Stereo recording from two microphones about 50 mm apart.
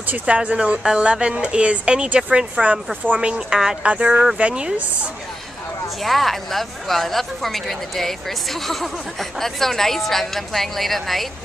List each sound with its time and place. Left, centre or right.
0.4 s speech: right
6.0 s a woman's voice: centre